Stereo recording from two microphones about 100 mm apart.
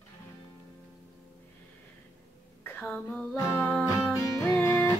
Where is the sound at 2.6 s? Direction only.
20° left (ahead or behind).